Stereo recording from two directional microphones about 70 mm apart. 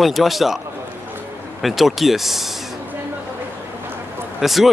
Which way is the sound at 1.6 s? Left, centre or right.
Centre.